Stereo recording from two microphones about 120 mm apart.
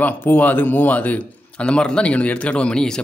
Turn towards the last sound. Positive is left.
turn(degrees=5)  # may be behind; listen again after turning